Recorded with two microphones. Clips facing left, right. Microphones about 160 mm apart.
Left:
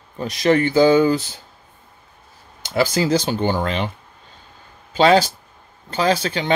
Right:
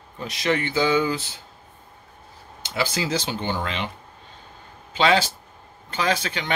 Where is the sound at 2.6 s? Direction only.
40° left (ahead or behind).